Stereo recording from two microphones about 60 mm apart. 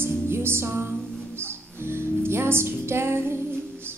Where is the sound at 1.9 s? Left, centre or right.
Right.